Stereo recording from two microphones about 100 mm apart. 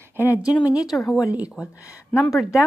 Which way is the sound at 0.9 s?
Centre (ahead or behind).